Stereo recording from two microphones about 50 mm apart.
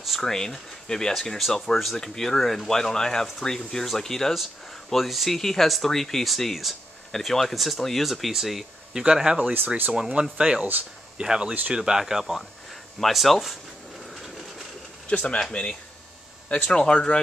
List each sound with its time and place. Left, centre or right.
0.0 s a sound: centre
0.8 s speech: centre
10.6 s speech: right
11.1 s speech: centre
15.0 s speech: left
16.7 s speech: centre